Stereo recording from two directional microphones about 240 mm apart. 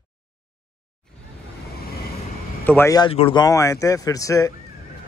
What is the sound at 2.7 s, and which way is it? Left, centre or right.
Speech, centre.